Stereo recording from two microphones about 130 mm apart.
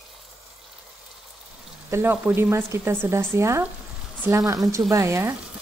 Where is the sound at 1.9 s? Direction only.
15° right (ahead or behind).